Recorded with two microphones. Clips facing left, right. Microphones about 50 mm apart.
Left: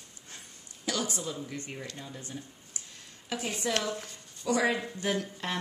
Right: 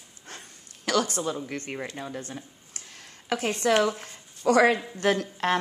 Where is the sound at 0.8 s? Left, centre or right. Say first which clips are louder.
Right 7 dB; right.